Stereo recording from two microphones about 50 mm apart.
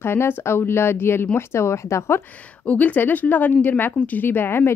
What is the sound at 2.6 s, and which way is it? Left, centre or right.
Speech, left.